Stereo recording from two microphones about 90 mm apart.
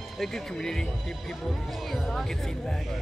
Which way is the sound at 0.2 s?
5° left (ahead or behind).